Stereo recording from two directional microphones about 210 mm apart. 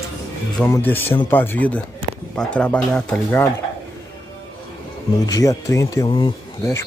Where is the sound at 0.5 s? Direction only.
10° left (ahead or behind).